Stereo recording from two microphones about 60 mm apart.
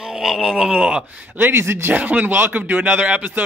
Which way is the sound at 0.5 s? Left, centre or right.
Centre.